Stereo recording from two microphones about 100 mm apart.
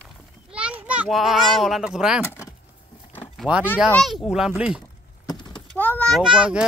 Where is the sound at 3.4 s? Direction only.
10° right (ahead or behind).